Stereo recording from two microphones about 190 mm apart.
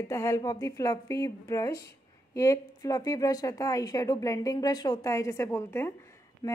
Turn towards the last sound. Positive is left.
turn(degrees=15)  # may be behind; listen again after turning